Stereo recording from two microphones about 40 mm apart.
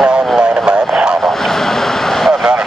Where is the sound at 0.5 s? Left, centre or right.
Centre.